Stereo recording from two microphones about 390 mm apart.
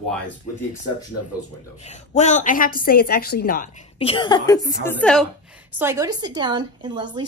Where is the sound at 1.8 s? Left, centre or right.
Centre.